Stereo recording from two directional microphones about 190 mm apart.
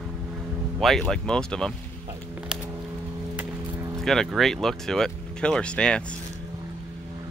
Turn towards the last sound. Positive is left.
turn(degrees=5)  # may be behind; listen again after turning